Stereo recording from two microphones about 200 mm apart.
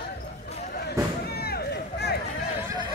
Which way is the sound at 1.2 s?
50° left (ahead or behind).